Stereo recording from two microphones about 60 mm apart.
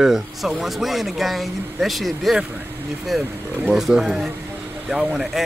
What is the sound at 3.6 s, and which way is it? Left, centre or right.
A man's voice, centre.